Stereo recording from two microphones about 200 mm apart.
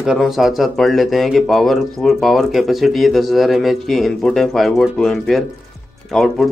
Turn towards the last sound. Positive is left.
turn(degrees=0)  # may be behind; listen again after turning